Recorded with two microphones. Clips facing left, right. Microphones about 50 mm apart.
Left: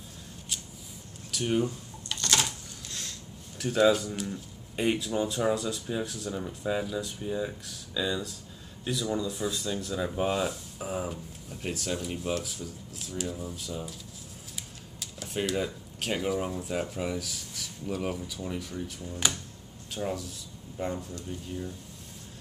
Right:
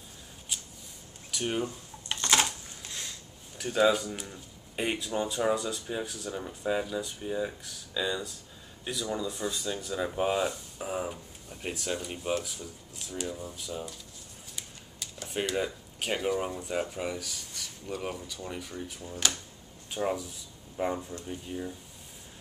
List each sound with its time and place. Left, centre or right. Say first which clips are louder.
1.3 s speech: left 3 dB; centre
2.0 s speech: right 2 dB; right; by 19.1 s centre
19.9 s speech: right 2 dB; centre